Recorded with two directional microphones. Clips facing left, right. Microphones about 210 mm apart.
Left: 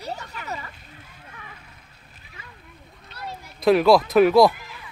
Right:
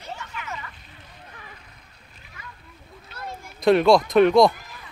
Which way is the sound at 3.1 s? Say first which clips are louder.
Even; 50° right (ahead or behind).